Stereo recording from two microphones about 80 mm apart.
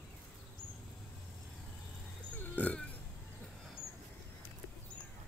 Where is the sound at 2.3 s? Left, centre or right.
Left.